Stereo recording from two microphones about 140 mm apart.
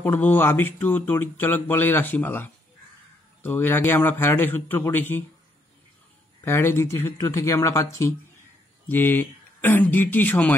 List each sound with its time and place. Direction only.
0.0 s speech: 15° left (ahead or behind)
6.4 s speech: 15° left (ahead or behind)